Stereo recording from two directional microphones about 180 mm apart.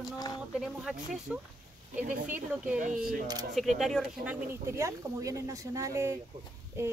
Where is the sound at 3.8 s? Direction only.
Centre (ahead or behind).